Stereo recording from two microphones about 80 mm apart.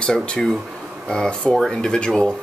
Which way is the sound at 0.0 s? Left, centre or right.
Centre.